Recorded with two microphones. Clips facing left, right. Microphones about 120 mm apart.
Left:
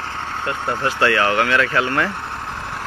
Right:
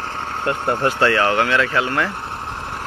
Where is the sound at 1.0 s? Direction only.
25° right (ahead or behind).